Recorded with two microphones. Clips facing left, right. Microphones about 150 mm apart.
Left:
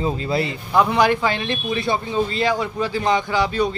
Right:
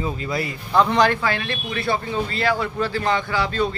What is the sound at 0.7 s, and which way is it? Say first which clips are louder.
Speech: left 1 dB; 10° left (ahead or behind).